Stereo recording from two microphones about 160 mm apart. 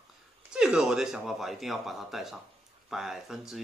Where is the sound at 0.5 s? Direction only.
5° right (ahead or behind).